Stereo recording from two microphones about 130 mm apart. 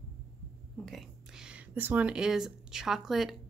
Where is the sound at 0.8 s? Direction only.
Centre (ahead or behind).